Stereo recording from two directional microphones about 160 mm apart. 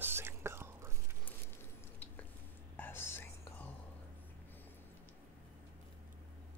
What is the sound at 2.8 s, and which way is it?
Whispering, 15° left (ahead or behind).